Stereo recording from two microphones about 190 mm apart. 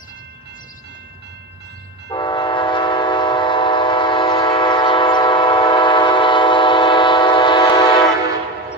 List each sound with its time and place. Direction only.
2.0 s train: 25° left (ahead or behind)